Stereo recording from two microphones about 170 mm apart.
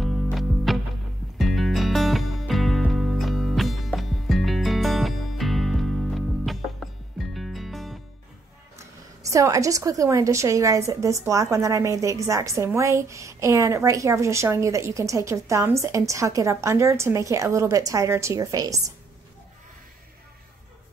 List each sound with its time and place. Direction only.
0.0 s music: centre (ahead or behind)
9.3 s a woman's voice: 20° right (ahead or behind)